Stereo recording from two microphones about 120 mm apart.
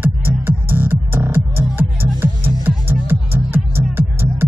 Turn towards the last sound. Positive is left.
turn(degrees=-20)  # may be behind; listen again after turning